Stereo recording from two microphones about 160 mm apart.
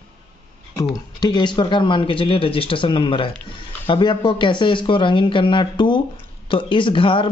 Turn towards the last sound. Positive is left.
turn(degrees=30)  # may be behind; listen again after turning